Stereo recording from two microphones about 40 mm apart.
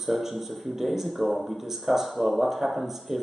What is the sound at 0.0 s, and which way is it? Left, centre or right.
Speech, centre.